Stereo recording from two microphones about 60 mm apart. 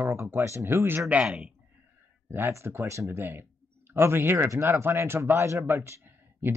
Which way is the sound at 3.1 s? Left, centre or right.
Right.